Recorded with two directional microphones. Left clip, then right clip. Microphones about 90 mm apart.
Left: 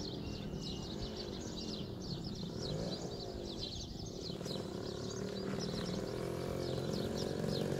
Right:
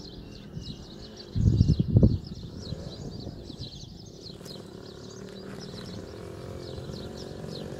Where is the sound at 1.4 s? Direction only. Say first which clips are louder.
Right 13 dB; 25° left (ahead or behind).